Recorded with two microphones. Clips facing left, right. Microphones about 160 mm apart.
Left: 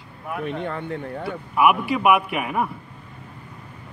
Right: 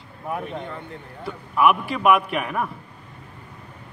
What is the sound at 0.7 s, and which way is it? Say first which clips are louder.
Speech: left 7 dB; 70° left (ahead or behind).